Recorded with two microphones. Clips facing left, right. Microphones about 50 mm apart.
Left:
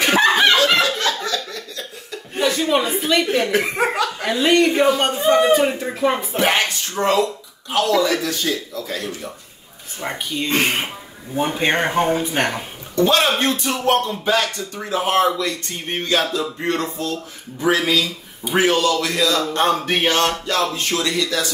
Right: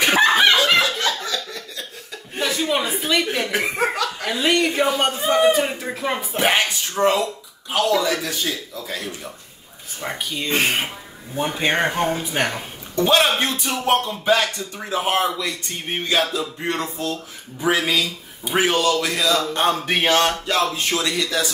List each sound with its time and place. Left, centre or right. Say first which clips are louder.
0.0 s snicker: left 1 dB; centre
0.7 s laughter: left 1 dB; centre
2.3 s chuckle: left 4 dB; centre
3.7 s speech: left 2 dB; centre
4.3 s a man's voice: left 4 dB; centre
7.0 s speech: left 1 dB; centre
10.0 s a man's voice: left 2 dB; centre
12.9 s speech: left 1 dB; centre